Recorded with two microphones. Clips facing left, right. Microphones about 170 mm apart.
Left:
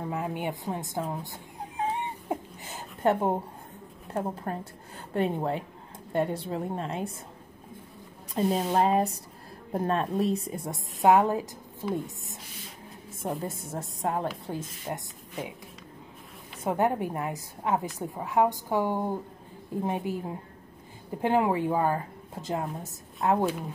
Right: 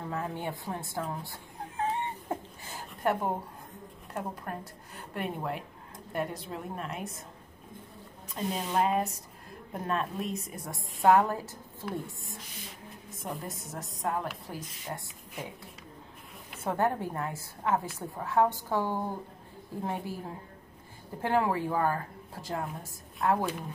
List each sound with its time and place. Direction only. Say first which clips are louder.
0.1 s chicken: left 2 dB; 15° left (ahead or behind)
4.1 s a woman's voice: left 5 dB; 30° left (ahead or behind)
8.4 s a woman's voice: left 5 dB; 35° left (ahead or behind)
16.6 s a woman's voice: left 3 dB; 15° left (ahead or behind)